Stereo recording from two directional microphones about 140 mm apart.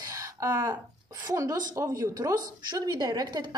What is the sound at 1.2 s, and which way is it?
A woman's voice, 25° right (ahead or behind).